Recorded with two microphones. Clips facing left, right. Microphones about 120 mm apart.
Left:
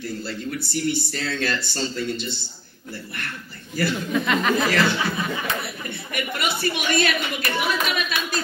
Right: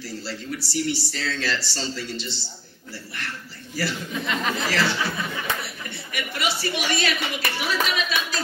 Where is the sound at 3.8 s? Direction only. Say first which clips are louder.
Left 5 dB; 65° left (ahead or behind).